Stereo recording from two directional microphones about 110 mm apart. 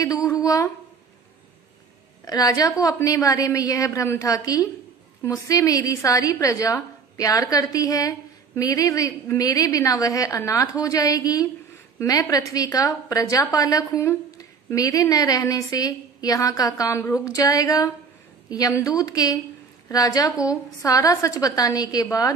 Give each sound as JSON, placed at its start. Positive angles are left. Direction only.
{"t": 0.0, "sound": "a woman's voice", "side_deg": 30}
{"t": 2.2, "sound": "a woman's voice", "side_deg": 35}